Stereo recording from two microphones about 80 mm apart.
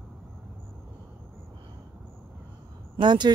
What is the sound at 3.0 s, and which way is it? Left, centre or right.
Speech, right.